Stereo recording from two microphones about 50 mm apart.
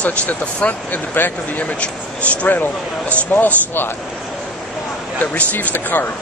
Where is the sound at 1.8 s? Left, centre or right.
Left.